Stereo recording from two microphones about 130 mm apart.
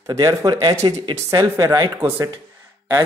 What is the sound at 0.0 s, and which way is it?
Speech, 25° right (ahead or behind).